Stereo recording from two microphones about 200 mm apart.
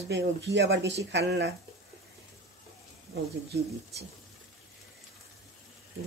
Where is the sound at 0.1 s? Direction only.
60° right (ahead or behind).